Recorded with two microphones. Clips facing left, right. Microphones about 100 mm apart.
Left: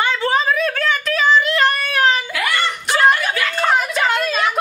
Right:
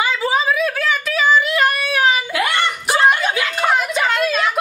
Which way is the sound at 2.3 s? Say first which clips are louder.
Right 2 dB; 20° right (ahead or behind).